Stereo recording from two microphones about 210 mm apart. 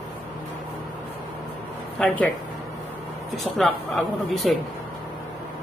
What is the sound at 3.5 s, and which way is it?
A man's voice, centre (ahead or behind).